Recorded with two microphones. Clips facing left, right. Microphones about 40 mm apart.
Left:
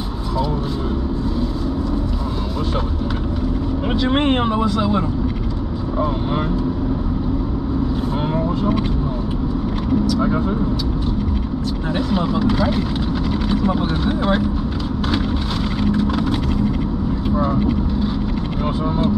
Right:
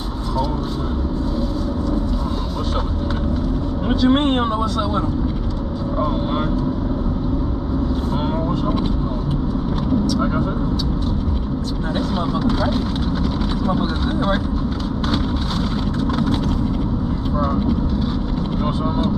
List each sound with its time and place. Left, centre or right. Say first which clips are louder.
3.8 s speech: right 2 dB; left
4.7 s speech: left 2 dB; left
5.9 s speech: even; centre
11.9 s speech: left 2 dB; left
15.9 s vehicle: left 2 dB; left